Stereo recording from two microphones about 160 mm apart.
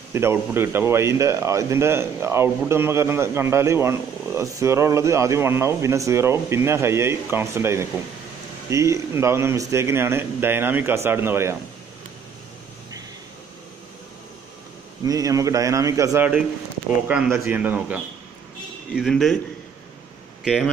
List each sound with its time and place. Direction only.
0.1 s speech: 15° right (ahead or behind)
15.0 s a man's voice: 20° right (ahead or behind)
18.9 s speech: centre (ahead or behind)
20.4 s speech: centre (ahead or behind)